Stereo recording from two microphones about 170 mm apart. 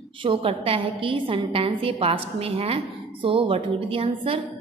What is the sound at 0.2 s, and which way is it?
A woman's voice, 30° right (ahead or behind).